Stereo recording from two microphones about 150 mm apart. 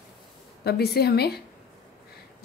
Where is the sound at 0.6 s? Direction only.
90° left.